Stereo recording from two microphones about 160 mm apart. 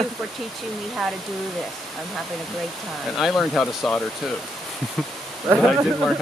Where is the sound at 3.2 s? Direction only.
Centre (ahead or behind).